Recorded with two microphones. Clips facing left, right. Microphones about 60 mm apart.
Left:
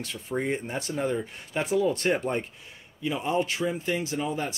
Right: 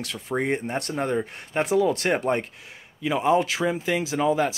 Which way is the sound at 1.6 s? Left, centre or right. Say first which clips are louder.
Right 2 dB; right.